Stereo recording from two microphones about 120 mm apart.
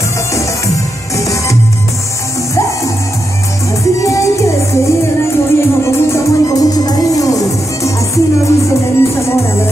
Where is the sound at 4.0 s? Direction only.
25° left (ahead or behind).